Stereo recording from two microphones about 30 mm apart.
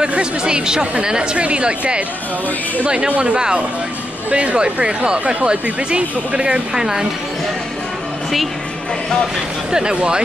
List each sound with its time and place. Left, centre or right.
0.2 s speech: right
3.1 s speech: right
6.7 s speech: right
9.7 s speech: right